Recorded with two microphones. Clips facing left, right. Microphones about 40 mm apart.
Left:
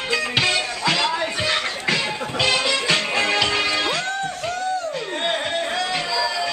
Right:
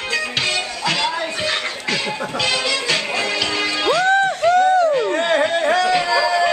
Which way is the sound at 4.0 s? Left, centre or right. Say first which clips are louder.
Right 10 dB; right.